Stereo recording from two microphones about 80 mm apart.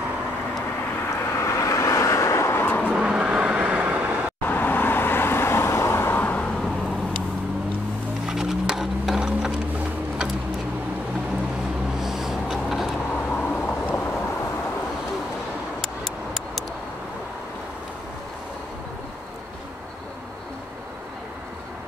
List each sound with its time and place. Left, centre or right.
1.1 s vehicle: left
2.9 s vehicle: centre
4.5 s vehicle: left
8.3 s sewing machine: centre
12.0 s a sound: centre
13.1 s vehicle: centre